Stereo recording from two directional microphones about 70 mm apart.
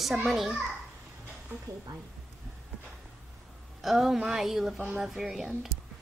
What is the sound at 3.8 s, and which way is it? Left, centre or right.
A woman's voice, centre.